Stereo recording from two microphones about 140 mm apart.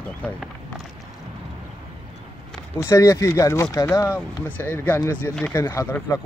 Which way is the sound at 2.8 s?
20° left (ahead or behind).